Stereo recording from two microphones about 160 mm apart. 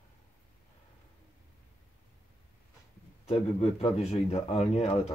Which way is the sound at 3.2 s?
40° left (ahead or behind).